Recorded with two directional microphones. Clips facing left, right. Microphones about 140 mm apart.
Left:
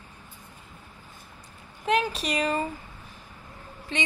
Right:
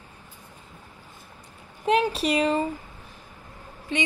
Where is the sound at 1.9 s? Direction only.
30° right (ahead or behind).